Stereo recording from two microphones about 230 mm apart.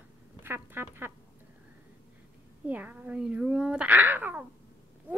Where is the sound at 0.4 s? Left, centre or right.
Centre.